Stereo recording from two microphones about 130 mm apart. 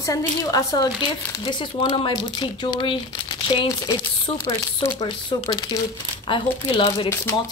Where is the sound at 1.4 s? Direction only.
35° left (ahead or behind).